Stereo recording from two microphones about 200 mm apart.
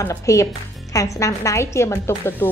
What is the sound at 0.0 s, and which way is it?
A woman's voice, 15° left (ahead or behind).